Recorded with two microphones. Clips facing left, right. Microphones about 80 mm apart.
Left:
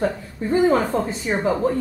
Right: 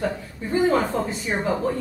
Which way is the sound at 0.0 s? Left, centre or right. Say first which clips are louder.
Left 4 dB; left.